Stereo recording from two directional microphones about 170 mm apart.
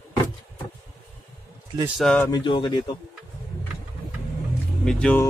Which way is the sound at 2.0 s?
5° left (ahead or behind).